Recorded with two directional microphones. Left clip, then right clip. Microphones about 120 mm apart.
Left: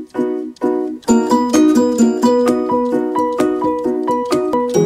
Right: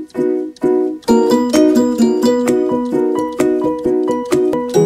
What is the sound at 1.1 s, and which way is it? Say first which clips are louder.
Music: right 1 dB; 5° right (ahead or behind).